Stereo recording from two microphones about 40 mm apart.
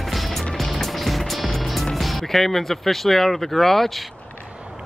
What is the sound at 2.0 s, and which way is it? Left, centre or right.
Speech, centre.